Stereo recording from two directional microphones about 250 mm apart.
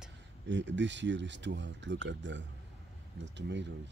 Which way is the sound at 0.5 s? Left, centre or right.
Right.